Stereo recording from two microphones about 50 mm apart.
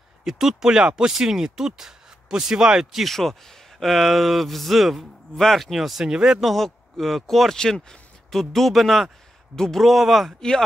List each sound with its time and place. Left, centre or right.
0.2 s speech: centre
6.5 s speech: centre
8.3 s speech: centre